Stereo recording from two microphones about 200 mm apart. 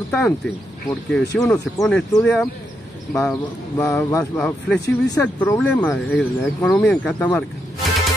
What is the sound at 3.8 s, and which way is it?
Speech, 15° left (ahead or behind).